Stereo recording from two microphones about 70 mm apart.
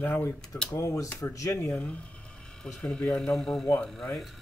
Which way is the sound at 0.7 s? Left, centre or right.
Left.